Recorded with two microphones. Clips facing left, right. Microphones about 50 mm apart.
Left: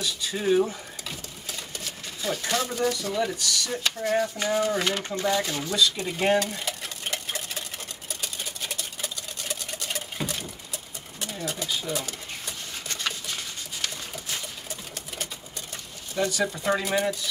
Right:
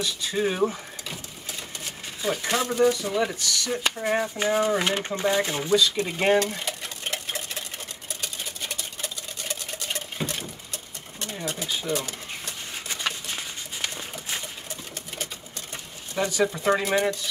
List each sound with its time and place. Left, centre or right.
0.0 s speech: centre
1.9 s speech: centre
5.8 s speech: centre
6.5 s stir: centre
8.2 s a sound: centre
9.9 s sewing machine: centre
11.6 s speech: centre
11.9 s a sound: centre
16.2 s speech: centre